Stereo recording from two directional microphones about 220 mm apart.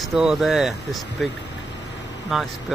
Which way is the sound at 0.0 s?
Centre (ahead or behind).